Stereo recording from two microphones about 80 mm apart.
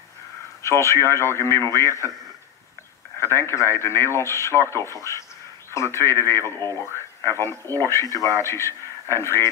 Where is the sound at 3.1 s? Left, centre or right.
Left.